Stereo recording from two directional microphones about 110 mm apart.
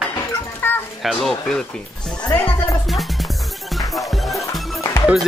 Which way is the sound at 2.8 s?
Centre (ahead or behind).